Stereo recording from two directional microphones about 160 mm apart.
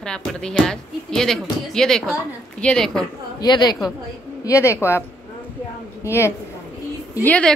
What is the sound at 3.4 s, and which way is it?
A woman's voice, 25° left (ahead or behind).